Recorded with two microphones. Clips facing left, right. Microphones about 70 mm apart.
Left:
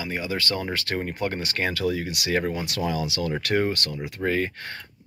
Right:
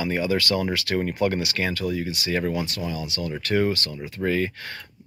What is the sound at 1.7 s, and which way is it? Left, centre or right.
Speech, left.